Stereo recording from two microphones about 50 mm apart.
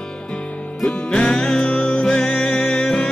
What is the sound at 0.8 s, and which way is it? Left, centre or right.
Music, left.